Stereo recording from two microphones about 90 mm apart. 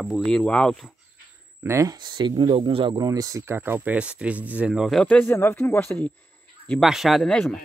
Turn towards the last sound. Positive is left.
turn(degrees=10)  # may be behind; listen again after turning